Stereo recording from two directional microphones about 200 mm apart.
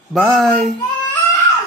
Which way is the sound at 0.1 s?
Centre (ahead or behind).